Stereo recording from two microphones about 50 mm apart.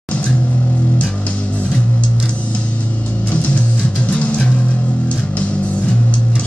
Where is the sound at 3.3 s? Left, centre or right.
Left.